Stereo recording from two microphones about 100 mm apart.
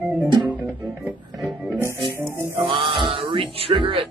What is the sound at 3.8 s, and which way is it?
Speech, 60° right (ahead or behind).